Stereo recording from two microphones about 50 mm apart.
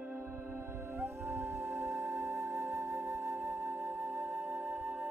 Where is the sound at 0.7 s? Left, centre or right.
Right.